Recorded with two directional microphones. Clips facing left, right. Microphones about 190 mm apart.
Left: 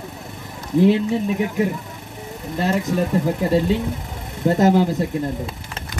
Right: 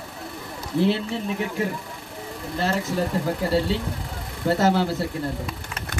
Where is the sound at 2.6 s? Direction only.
15° left (ahead or behind).